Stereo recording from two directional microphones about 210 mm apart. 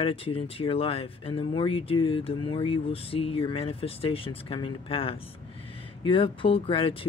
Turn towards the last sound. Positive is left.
turn(degrees=25)  # may be behind; listen again after turning